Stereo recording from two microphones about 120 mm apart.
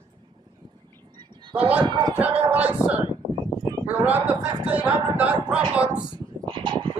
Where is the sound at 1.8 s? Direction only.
40° right (ahead or behind).